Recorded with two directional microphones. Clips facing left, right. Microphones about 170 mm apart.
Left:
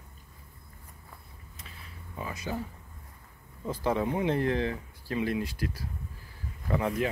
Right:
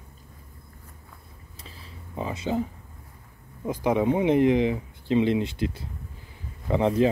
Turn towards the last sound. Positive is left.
turn(degrees=-30)  # may be behind; listen again after turning